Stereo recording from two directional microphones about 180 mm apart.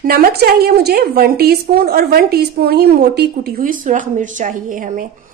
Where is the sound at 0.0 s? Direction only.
55° right (ahead or behind).